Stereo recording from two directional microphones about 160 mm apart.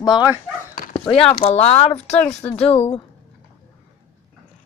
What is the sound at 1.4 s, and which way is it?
Speech, 40° left (ahead or behind).